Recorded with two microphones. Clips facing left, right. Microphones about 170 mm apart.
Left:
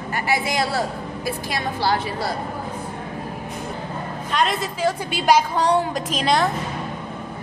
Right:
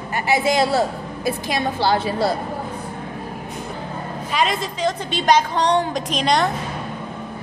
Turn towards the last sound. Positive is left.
turn(degrees=5)  # may be behind; listen again after turning